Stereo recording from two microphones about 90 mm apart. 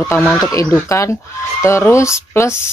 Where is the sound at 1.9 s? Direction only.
35° left (ahead or behind).